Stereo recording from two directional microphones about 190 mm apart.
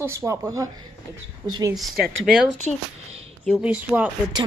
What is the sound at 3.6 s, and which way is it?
Speech, 5° right (ahead or behind).